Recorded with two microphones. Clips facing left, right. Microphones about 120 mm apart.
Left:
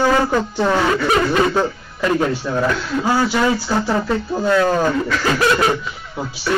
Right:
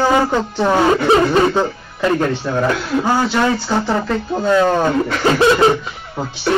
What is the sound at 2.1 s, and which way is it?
Speech, 10° left (ahead or behind).